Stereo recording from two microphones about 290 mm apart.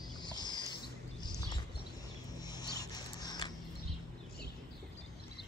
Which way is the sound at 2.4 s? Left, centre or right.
Centre.